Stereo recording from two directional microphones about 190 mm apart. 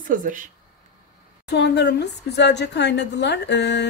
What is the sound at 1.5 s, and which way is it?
A woman's voice, 65° left (ahead or behind).